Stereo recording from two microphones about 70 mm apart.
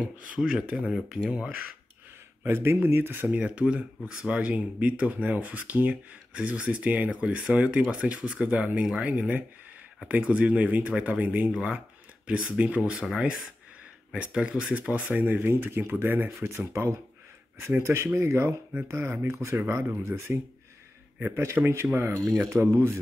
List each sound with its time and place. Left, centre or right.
0.4 s speech: centre
2.4 s speech: right; by 13.0 s centre
14.1 s speech: centre
16.3 s speech: right